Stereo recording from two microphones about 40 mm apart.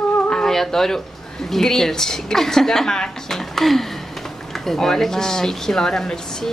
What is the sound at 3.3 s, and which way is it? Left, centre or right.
Speech, centre.